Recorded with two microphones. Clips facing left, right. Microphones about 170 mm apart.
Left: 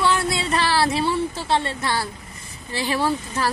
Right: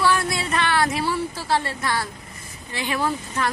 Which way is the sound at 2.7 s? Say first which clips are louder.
Left 2 dB; 30° left (ahead or behind).